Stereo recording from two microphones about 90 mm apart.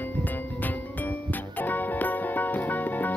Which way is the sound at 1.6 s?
20° left (ahead or behind).